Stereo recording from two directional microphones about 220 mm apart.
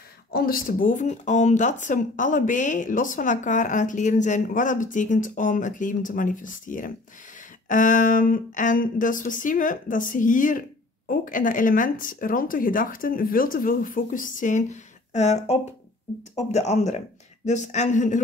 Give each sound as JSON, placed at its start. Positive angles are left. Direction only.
{"t": 0.3, "sound": "speech", "side_deg": 40}